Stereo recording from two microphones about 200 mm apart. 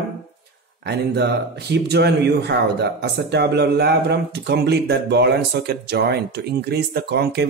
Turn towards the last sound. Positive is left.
turn(degrees=-55)  # may be behind; listen again after turning